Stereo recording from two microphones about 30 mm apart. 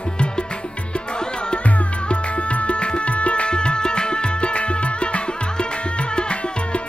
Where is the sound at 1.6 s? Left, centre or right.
Left.